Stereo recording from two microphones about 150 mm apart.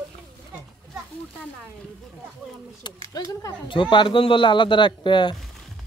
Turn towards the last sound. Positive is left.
turn(degrees=30)  # may be behind; listen again after turning